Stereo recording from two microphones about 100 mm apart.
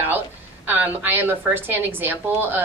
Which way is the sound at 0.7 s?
20° right (ahead or behind).